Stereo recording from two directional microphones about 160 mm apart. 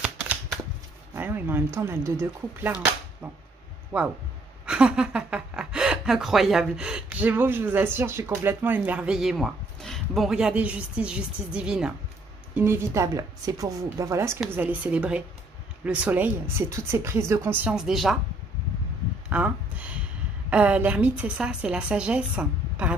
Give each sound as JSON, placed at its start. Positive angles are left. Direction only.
{"t": 1.1, "sound": "speech", "side_deg": -15}
{"t": 3.9, "sound": "a woman's voice", "side_deg": -10}
{"t": 19.2, "sound": "a sound", "side_deg": -10}
{"t": 20.4, "sound": "a woman's voice", "side_deg": -10}